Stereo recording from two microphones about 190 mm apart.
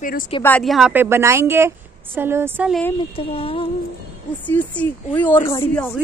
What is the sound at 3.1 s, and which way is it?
Speech, 30° left (ahead or behind).